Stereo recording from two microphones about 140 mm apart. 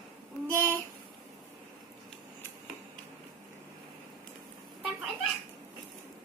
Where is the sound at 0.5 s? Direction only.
15° left (ahead or behind).